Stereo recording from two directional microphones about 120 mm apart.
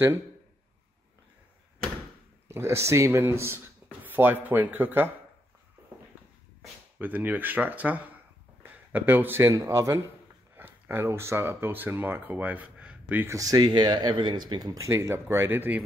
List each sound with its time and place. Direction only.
2.4 s speech: 25° right (ahead or behind)
7.0 s speech: 15° right (ahead or behind)
9.5 s speech: 25° right (ahead or behind)
13.4 s speech: 35° right (ahead or behind); by 15.8 s 15° right (ahead or behind)